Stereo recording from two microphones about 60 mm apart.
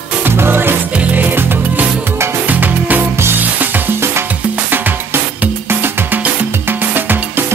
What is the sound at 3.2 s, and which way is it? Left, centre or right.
Music, right.